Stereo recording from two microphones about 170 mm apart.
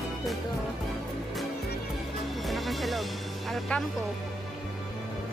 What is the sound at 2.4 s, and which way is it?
Music, centre (ahead or behind).